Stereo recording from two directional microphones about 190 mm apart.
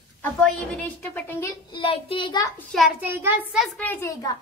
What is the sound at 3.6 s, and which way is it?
Speech, 10° left (ahead or behind).